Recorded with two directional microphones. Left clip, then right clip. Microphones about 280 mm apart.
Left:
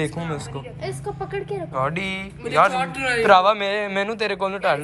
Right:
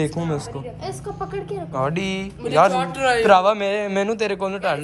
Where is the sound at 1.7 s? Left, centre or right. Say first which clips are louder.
Right 1 dB; centre.